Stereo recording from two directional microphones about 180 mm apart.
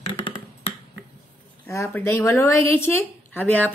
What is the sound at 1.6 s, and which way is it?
Speech, 15° left (ahead or behind).